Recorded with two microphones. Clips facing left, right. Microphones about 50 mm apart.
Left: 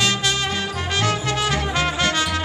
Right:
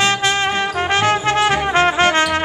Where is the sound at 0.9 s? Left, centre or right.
Right.